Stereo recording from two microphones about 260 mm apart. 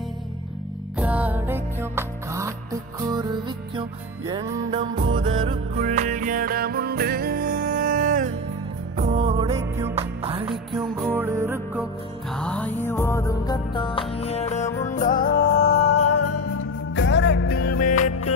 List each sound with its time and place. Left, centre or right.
0.9 s music: centre
4.3 s music: centre
9.5 s music: centre
9.9 s music: right
12.4 s music: centre; by 16.0 s left
16.0 s music: left
16.9 s music: left